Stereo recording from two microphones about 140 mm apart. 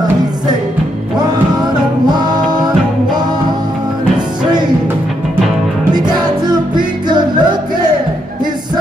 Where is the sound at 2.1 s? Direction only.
30° right (ahead or behind).